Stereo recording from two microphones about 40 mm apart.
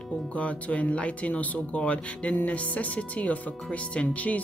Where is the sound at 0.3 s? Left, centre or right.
Left.